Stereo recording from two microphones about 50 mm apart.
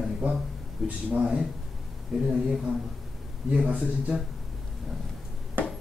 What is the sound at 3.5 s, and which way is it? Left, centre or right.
Speech, right.